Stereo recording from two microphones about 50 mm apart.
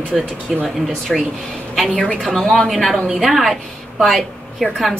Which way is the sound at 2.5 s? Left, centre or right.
Centre.